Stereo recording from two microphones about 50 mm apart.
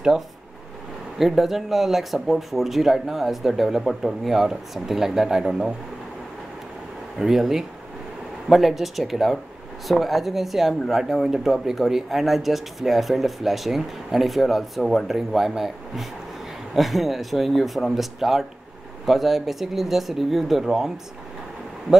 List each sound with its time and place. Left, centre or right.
1.1 s speech: centre
7.2 s speech: centre